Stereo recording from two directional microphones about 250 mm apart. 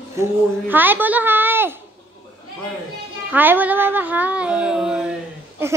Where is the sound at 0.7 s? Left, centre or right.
Centre.